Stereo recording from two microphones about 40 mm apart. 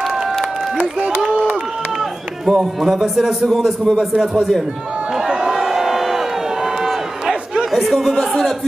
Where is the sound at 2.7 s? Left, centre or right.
Centre.